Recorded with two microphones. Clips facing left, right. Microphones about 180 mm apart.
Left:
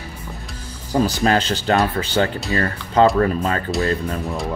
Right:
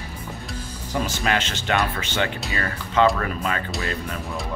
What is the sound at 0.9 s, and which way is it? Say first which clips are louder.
Speech: left 7 dB; 35° left (ahead or behind).